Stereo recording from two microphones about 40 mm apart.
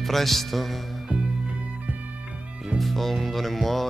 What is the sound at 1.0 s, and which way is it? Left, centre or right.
Music, right.